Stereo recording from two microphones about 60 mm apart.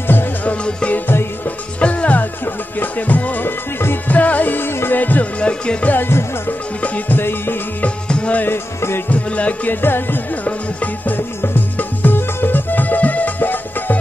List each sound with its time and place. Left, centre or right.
0.1 s music: left
0.7 s music: centre
0.9 s music: left
1.8 s music: left
5.4 s music: centre
5.9 s music: left
7.8 s music: left
8.5 s music: left
9.1 s music: left